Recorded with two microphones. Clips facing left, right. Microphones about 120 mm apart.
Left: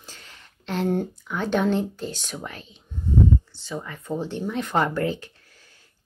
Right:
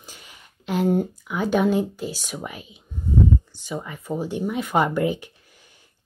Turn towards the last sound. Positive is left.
turn(degrees=-15)  # may be behind; listen again after turning